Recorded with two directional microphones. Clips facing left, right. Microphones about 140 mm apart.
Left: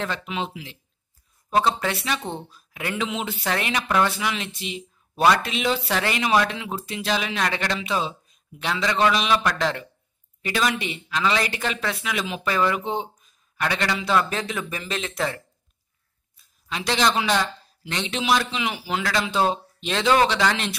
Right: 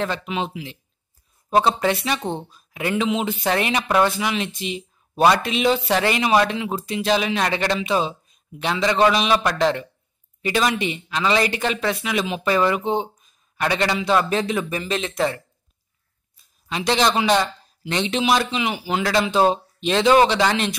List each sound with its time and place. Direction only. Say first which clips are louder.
0.3 s speech: right 3 dB; 15° right (ahead or behind)
1.5 s speech: right 4 dB; 25° right (ahead or behind)
2.7 s speech: right 6 dB; 10° right (ahead or behind)
16.7 s speech: right 3 dB; 20° right (ahead or behind)